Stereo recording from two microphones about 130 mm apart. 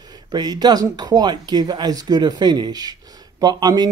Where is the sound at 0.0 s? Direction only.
30° right (ahead or behind).